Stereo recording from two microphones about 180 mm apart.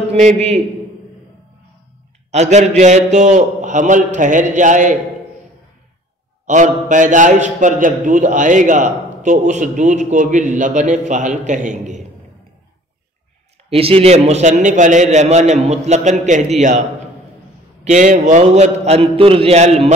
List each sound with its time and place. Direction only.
0.1 s a man's voice: 35° right (ahead or behind)
2.3 s a man's voice: 40° right (ahead or behind)
6.4 s a man's voice: 45° right (ahead or behind)
13.7 s a man's voice: 35° right (ahead or behind)
17.8 s a man's voice: 45° right (ahead or behind)